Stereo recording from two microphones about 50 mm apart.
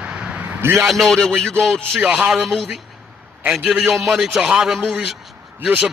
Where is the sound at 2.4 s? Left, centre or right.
Centre.